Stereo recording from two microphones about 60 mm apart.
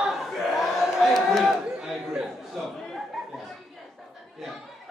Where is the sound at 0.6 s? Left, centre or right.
Centre.